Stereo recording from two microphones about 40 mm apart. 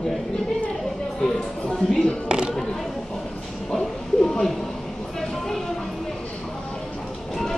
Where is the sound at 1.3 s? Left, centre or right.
Centre.